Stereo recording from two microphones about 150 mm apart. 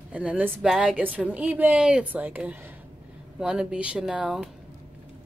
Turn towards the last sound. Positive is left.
turn(degrees=-5)  # may be behind; listen again after turning